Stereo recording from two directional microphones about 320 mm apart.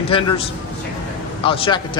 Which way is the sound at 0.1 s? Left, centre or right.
Centre.